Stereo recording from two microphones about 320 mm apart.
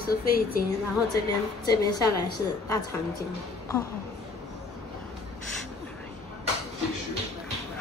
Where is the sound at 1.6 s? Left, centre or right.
Centre.